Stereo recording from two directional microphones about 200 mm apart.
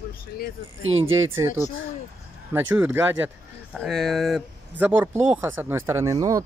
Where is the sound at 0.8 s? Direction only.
85° right.